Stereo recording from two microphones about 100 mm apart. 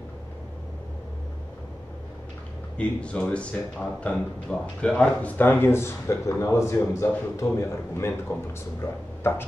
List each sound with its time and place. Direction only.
2.8 s speech: 10° left (ahead or behind)